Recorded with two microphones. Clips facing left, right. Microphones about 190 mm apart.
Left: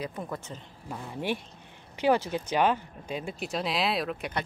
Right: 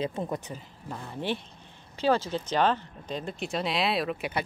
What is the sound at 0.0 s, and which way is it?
Speech, 25° right (ahead or behind).